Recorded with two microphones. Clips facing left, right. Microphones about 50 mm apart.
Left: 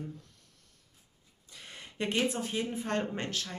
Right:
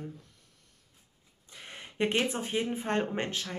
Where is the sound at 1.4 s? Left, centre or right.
Right.